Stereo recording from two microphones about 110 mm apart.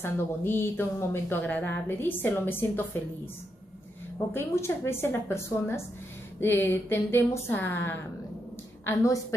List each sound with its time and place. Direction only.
0.0 s speech: 20° left (ahead or behind)
4.3 s speech: 20° left (ahead or behind)
8.8 s speech: 30° left (ahead or behind)